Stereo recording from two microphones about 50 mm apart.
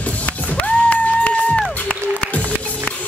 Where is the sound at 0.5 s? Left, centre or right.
Left.